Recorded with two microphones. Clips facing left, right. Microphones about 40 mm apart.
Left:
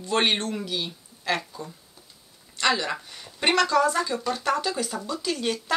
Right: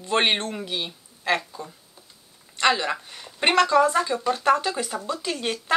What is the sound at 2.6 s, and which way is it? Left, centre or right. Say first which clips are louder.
Speech: right 3 dB; right.